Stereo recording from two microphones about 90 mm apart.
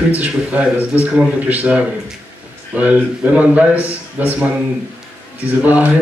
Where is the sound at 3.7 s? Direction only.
30° left (ahead or behind).